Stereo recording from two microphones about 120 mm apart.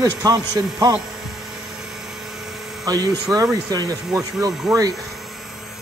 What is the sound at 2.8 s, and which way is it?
Speech, 30° right (ahead or behind).